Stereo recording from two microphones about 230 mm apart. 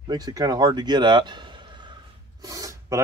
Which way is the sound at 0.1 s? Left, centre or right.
Centre.